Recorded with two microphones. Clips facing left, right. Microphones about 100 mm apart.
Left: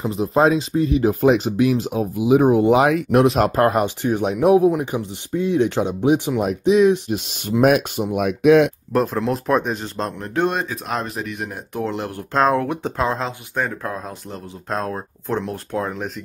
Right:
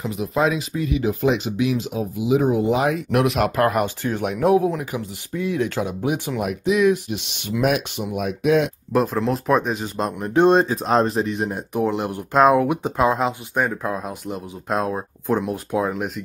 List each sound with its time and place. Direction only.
0.0 s speech: 35° left (ahead or behind); by 3.0 s 70° left (ahead or behind)
3.1 s speech: 30° left (ahead or behind)
4.7 s speech: 30° left (ahead or behind)
7.1 s speech: 40° left (ahead or behind)
8.2 s speech: 60° left (ahead or behind)
8.9 s speech: centre (ahead or behind)